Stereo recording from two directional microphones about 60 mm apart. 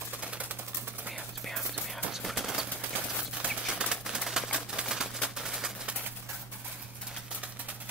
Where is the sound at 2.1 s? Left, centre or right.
Centre.